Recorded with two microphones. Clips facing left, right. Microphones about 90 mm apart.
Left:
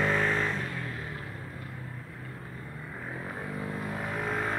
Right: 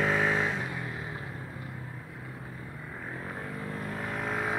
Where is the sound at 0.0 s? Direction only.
5° right (ahead or behind).